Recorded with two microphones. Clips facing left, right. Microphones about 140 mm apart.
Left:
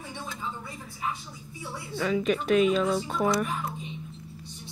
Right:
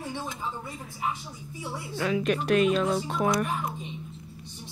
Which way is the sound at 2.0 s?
5° right (ahead or behind).